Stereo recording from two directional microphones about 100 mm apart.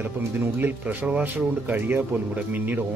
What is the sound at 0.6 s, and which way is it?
Speech, 15° right (ahead or behind).